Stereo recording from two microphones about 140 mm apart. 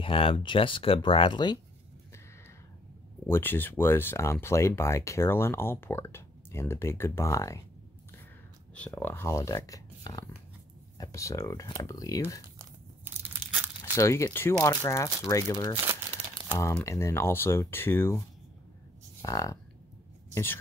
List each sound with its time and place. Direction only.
0.0 s speech: 40° left (ahead or behind)
3.3 s speech: 15° left (ahead or behind)
8.7 s speech: 10° left (ahead or behind)
13.9 s speech: 20° left (ahead or behind)
15.7 s crumpling: 25° right (ahead or behind)
16.4 s speech: 20° left (ahead or behind)
19.2 s speech: 25° left (ahead or behind)